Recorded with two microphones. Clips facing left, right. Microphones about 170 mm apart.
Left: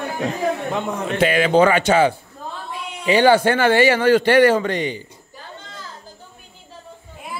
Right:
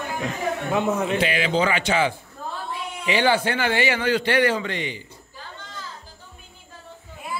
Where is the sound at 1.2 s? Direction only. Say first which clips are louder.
Left 7 dB; 50° left (ahead or behind).